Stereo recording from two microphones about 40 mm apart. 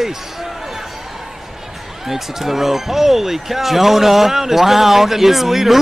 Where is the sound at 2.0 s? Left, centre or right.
Centre.